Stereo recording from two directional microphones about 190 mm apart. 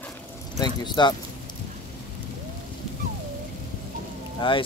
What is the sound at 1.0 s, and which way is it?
Speech, 20° left (ahead or behind).